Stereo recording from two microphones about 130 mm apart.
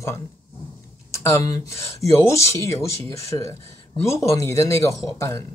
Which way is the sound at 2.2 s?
20° left (ahead or behind).